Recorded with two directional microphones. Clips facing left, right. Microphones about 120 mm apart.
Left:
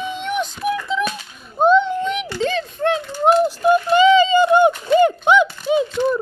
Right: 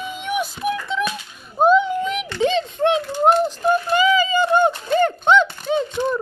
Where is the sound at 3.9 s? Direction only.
25° left (ahead or behind).